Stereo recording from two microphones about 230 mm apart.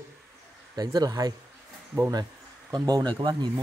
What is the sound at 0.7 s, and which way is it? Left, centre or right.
Speech, centre.